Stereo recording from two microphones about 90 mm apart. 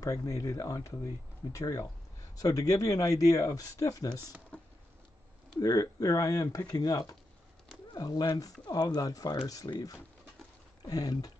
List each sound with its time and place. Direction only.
0.0 s speech: 40° left (ahead or behind)
4.5 s a sound: 10° left (ahead or behind)
5.6 s speech: 45° left (ahead or behind)